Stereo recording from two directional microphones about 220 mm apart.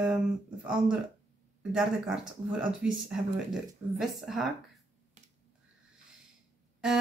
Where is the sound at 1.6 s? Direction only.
5° right (ahead or behind).